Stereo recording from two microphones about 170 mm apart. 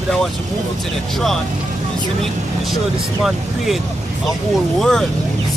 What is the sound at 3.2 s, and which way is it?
Speech, centre (ahead or behind).